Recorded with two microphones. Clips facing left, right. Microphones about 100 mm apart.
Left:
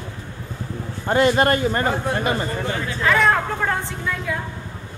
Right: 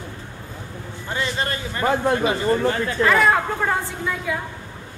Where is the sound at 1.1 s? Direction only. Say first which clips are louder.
Left 9 dB; 55° left (ahead or behind).